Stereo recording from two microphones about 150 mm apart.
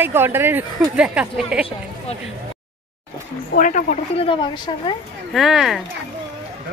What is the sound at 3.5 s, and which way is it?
Speech, 60° left (ahead or behind).